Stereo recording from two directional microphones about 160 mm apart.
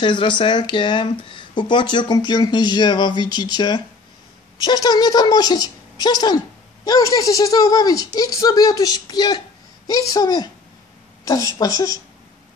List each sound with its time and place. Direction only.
0.0 s speech: 30° left (ahead or behind)
4.8 s speech: 25° left (ahead or behind)